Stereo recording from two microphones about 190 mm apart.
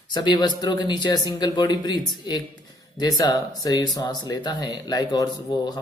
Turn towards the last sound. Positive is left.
turn(degrees=20)  # may be behind; listen again after turning